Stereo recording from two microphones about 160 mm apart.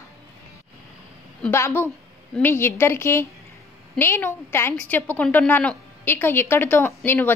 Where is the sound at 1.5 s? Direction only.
15° left (ahead or behind).